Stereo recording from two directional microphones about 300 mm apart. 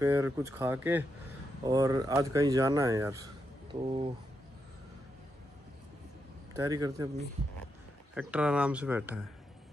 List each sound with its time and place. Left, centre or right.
0.0 s speech: centre
6.5 s speech: centre
8.1 s speech: centre